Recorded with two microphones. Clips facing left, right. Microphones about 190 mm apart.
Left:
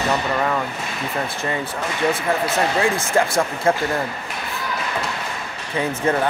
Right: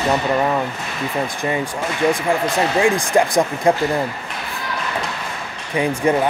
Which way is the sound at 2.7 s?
15° right (ahead or behind).